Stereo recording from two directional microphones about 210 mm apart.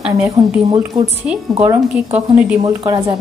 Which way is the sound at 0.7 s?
15° right (ahead or behind).